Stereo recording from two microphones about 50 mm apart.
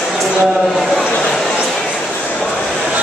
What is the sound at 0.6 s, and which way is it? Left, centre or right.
Speech, centre.